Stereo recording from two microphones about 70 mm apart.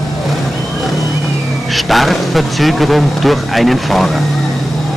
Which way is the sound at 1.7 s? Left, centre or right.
Centre.